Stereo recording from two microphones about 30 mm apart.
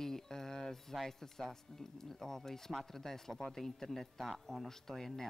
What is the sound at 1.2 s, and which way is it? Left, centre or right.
A man's voice, centre.